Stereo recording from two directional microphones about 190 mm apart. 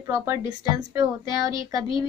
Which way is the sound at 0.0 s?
15° right (ahead or behind).